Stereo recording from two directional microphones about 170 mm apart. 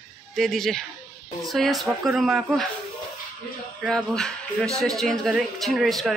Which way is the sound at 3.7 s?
5° left (ahead or behind).